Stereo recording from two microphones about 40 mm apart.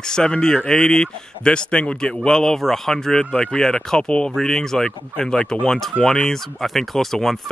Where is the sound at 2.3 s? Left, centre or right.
Centre.